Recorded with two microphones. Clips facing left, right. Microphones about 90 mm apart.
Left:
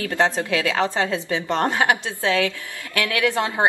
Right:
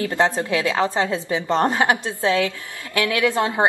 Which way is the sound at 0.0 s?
20° right (ahead or behind).